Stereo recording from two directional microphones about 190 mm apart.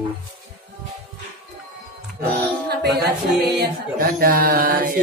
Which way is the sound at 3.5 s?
50° right (ahead or behind).